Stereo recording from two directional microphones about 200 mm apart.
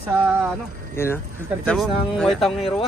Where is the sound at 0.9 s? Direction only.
10° left (ahead or behind).